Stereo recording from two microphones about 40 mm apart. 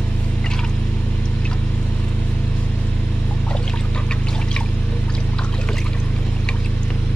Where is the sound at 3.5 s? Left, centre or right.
Left.